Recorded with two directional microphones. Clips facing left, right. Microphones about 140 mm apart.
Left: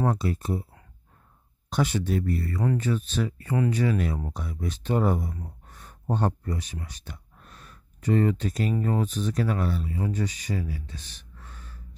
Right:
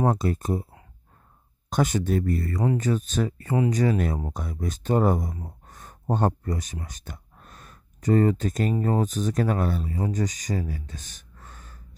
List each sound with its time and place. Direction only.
0.1 s speech: 45° right (ahead or behind)
1.7 s speech: 45° right (ahead or behind)
5.7 s a sound: 45° right (ahead or behind)
8.8 s speech: 40° right (ahead or behind)